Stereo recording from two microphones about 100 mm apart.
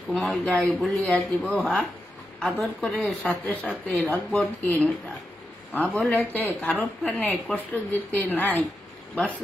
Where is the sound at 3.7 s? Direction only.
5° left (ahead or behind).